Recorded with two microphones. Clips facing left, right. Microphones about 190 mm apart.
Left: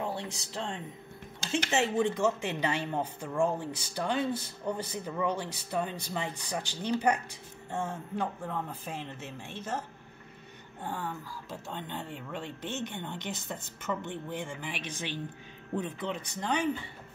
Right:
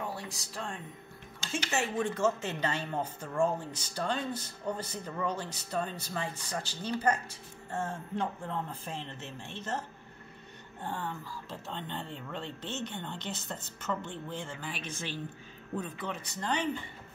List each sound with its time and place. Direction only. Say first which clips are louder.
0.0 s speech: left 3 dB; 25° left (ahead or behind)
10.8 s speech: left 1 dB; 10° left (ahead or behind)